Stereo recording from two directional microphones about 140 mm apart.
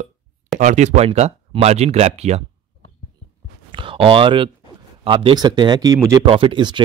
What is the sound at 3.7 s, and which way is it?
Speech, 40° right (ahead or behind).